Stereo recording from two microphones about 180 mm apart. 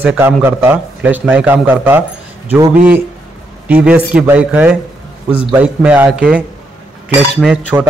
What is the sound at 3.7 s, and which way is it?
A man's voice, 10° right (ahead or behind).